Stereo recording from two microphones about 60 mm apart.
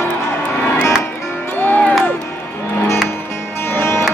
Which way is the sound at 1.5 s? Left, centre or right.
Left.